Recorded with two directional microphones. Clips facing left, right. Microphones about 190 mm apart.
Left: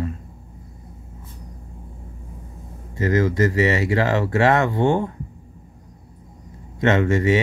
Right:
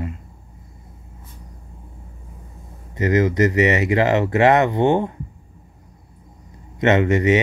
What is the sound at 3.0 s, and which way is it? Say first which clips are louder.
Speech: right 2 dB; 20° right (ahead or behind).